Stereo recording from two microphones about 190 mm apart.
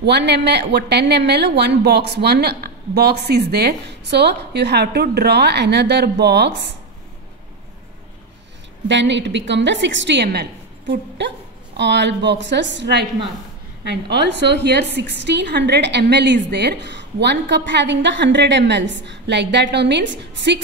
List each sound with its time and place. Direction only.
0.0 s a woman's voice: 65° right (ahead or behind)
8.8 s a woman's voice: 70° right (ahead or behind)